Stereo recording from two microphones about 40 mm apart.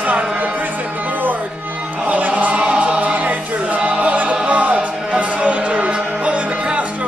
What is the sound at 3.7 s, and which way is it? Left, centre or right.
Choir, right.